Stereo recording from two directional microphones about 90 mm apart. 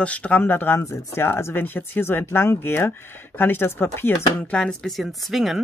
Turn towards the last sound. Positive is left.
turn(degrees=-5)  # may be behind; listen again after turning